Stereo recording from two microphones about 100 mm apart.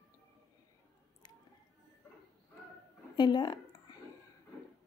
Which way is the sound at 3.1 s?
45° left (ahead or behind).